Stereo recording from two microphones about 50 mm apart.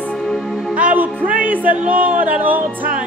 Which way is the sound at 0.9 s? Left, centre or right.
Right.